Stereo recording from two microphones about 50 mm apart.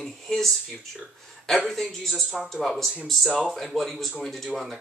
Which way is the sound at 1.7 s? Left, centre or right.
Centre.